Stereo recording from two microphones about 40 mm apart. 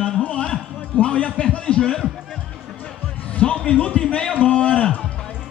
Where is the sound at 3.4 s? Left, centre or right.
Left.